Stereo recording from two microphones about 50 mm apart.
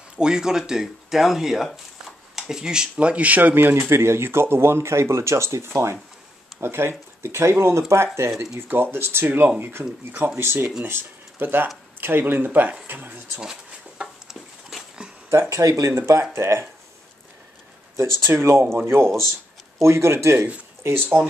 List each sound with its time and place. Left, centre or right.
0.1 s speech: centre; by 3.7 s right
3.9 s speech: right
8.6 s speech: right
13.4 s a sound: centre
15.5 s speech: right
17.9 s speech: right
18.9 s speech: right
19.8 s speech: right
20.8 s speech: right